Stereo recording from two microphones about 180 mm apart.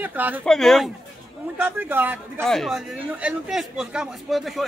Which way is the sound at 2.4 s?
Centre (ahead or behind).